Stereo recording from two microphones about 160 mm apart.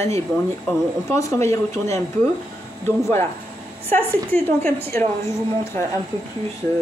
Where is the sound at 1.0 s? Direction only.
20° left (ahead or behind).